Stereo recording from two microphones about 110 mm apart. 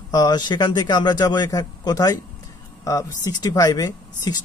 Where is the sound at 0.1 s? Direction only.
40° left (ahead or behind).